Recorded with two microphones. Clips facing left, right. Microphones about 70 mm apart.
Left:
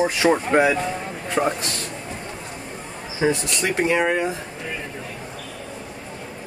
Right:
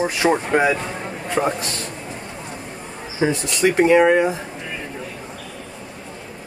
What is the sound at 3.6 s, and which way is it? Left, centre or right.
Speech, centre.